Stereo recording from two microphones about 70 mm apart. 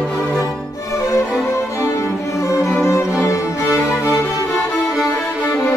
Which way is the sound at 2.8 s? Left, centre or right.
Left.